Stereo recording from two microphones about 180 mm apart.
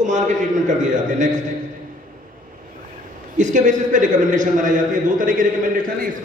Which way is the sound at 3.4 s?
45° right (ahead or behind).